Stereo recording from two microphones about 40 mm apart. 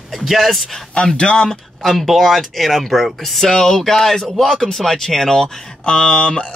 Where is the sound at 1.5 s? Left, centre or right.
Centre; by 6.4 s left.